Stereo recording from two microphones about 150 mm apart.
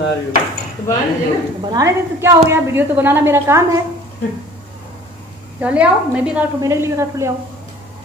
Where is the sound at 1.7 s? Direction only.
20° right (ahead or behind).